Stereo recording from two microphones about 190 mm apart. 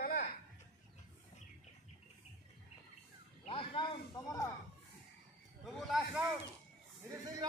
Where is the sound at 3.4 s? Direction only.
30° left (ahead or behind).